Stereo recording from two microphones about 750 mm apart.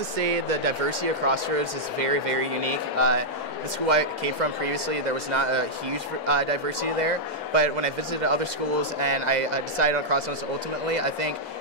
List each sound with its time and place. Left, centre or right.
0.2 s a man's voice: right